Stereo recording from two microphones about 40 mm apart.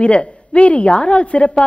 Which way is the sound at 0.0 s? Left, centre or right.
Left.